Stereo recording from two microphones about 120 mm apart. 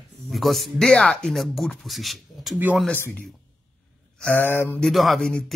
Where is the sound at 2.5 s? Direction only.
15° right (ahead or behind).